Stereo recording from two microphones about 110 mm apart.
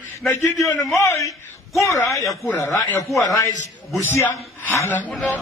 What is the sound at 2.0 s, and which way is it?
Speech, centre (ahead or behind).